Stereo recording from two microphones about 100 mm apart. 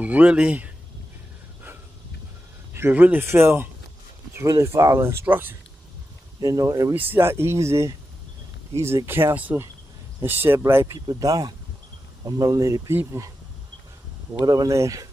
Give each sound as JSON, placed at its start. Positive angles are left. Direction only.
{"t": 0.0, "sound": "speech", "side_deg": -15}
{"t": 2.7, "sound": "speech", "side_deg": -20}
{"t": 6.4, "sound": "speech", "side_deg": -35}
{"t": 6.9, "sound": "speech", "side_deg": -20}
{"t": 14.4, "sound": "speech", "side_deg": -40}